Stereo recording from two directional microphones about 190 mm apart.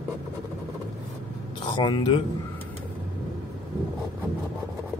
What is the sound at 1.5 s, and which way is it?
Speech, 25° left (ahead or behind).